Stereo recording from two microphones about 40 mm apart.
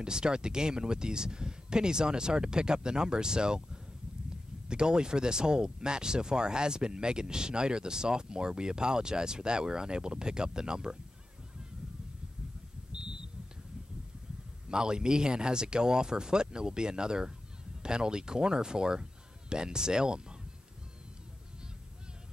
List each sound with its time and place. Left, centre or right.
0.0 s speech: right
12.9 s a sound: right
14.7 s speech: right